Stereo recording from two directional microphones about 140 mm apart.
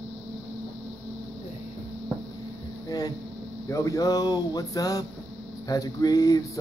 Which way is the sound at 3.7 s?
25° left (ahead or behind).